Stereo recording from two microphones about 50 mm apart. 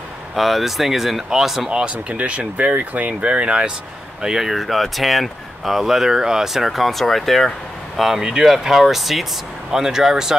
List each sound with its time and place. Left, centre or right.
0.4 s speech: centre
1.7 s speech: right
4.2 s speech: centre
8.0 s speech: centre